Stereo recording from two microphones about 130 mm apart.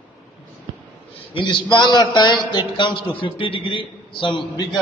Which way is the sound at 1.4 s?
35° left (ahead or behind).